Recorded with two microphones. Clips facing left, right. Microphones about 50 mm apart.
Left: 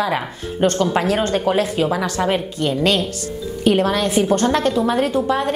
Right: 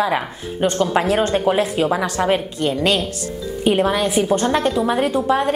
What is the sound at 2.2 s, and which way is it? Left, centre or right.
A woman's voice, centre.